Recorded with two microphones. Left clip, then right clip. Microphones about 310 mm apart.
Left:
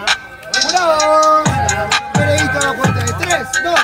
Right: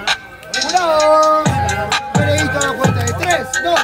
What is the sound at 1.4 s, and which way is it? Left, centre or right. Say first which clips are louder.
Music: left 1 dB; left.